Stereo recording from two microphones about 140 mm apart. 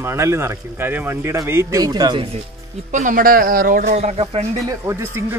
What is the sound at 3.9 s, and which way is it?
Speech, 50° right (ahead or behind).